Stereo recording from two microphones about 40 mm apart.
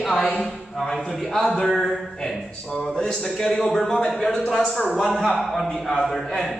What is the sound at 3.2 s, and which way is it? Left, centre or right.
Speech, centre.